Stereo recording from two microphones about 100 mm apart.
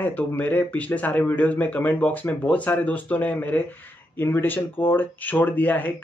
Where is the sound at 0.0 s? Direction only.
15° left (ahead or behind).